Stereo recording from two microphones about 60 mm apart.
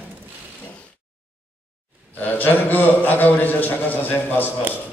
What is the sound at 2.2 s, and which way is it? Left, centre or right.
A man's voice, left.